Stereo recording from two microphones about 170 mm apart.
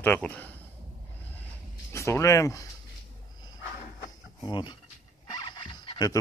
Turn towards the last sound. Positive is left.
turn(degrees=30)  # may be behind; listen again after turning